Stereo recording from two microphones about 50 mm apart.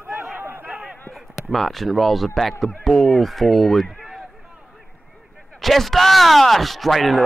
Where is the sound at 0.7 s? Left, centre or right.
Centre.